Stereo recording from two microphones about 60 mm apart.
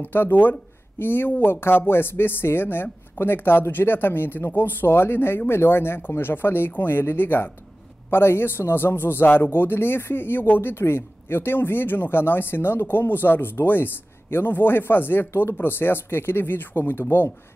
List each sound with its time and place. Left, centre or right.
0.0 s a man's voice: left